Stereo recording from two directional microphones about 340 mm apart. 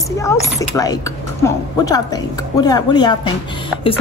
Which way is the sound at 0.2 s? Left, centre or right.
Centre.